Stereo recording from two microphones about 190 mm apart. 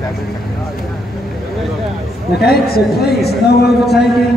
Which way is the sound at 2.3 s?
55° left (ahead or behind).